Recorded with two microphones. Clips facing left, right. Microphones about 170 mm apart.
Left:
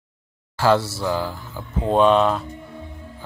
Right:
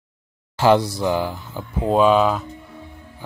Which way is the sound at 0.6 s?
15° right (ahead or behind).